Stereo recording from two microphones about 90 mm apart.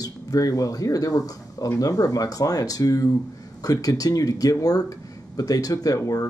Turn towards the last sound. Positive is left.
turn(degrees=40)  # may be behind; listen again after turning